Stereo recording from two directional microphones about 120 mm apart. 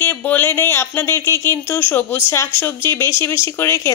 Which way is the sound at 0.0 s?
15° left (ahead or behind).